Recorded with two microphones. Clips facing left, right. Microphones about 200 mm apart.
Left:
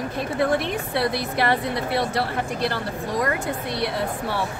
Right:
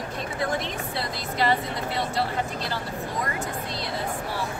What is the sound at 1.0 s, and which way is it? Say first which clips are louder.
A woman's voice: left 5 dB; 65° left (ahead or behind).